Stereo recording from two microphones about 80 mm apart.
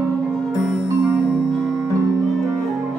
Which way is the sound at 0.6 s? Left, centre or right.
Centre.